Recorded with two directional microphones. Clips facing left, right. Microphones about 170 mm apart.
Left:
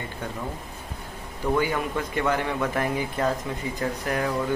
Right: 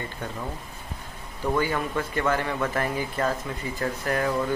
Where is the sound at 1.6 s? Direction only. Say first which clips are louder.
Left 1 dB; 15° left (ahead or behind).